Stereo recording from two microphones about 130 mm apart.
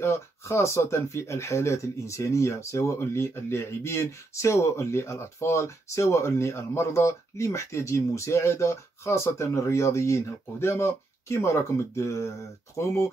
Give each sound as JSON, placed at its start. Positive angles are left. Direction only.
{"t": 0.0, "sound": "speech", "side_deg": 20}